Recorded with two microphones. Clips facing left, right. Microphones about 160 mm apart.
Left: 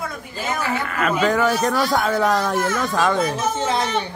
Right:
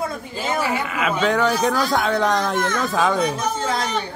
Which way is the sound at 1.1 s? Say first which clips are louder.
Left 1 dB; 5° left (ahead or behind).